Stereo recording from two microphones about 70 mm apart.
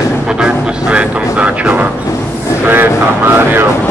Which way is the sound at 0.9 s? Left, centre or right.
Centre.